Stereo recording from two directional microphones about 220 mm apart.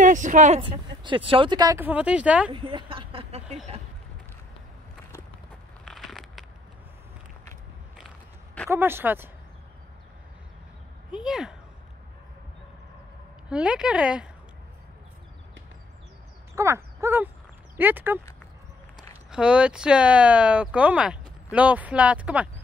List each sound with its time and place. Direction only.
0.0 s speech: 35° right (ahead or behind); by 2.5 s 5° right (ahead or behind)
2.5 s a sound: 20° right (ahead or behind)
5.9 s a sound: centre (ahead or behind)
8.6 s speech: 10° right (ahead or behind)
11.1 s speech: centre (ahead or behind)
13.5 s speech: 5° right (ahead or behind)
16.5 s owl: 10° right (ahead or behind)
17.7 s speech: 10° right (ahead or behind)
19.3 s speech: 5° right (ahead or behind)